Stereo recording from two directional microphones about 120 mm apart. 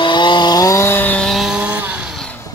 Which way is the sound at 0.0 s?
40° left (ahead or behind).